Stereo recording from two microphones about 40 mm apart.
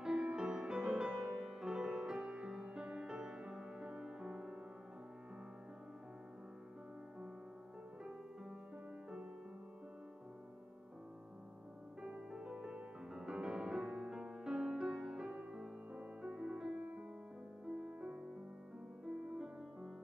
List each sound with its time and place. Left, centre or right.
0.0 s music: right
12.0 s music: right
16.2 s music: right
16.7 s music: right
17.7 s music: right